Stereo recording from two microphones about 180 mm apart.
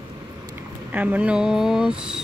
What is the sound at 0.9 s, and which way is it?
Speech, 10° right (ahead or behind).